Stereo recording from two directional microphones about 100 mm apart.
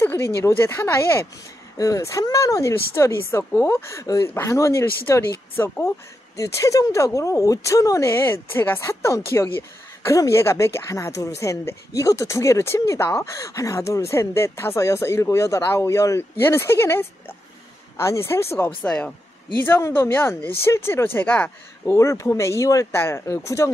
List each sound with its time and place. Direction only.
0.0 s speech: 20° left (ahead or behind)
1.8 s speech: 35° left (ahead or behind)
18.9 s speech: 10° left (ahead or behind)
19.6 s speech: 20° left (ahead or behind)